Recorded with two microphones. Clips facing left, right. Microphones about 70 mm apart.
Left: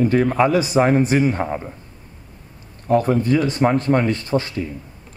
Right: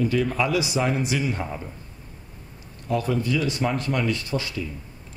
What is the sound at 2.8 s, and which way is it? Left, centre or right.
Speech, left.